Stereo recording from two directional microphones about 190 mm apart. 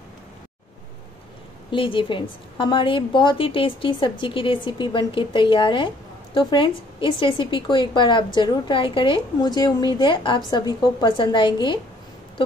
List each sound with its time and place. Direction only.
1.7 s a woman's voice: 25° left (ahead or behind)